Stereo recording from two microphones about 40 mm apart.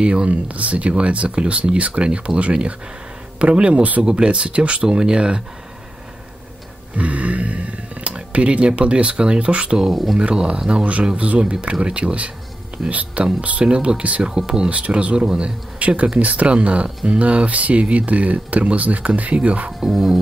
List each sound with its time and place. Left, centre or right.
0.0 s speech: right
7.0 s speech: right
14.2 s speech: right
14.7 s speech: right
16.2 s speech: right
19.9 s music: centre